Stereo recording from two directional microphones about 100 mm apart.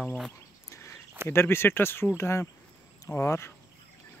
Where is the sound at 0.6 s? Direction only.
30° left (ahead or behind).